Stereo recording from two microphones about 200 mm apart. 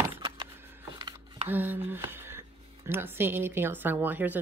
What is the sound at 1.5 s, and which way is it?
Speech, 10° right (ahead or behind).